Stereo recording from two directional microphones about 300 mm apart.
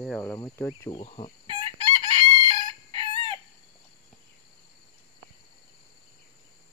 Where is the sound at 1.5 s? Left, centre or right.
Centre.